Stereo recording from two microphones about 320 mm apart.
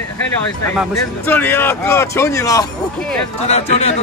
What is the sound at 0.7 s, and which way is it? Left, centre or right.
Speech, centre.